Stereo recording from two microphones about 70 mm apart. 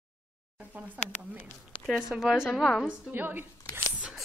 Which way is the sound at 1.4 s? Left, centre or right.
Centre.